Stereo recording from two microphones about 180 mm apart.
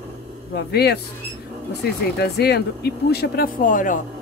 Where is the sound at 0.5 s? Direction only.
65° left (ahead or behind); by 4.0 s 50° left (ahead or behind).